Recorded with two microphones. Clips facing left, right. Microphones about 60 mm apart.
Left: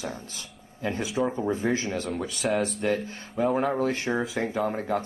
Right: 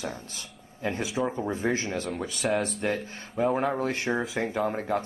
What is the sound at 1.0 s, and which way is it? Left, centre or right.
Speech, centre.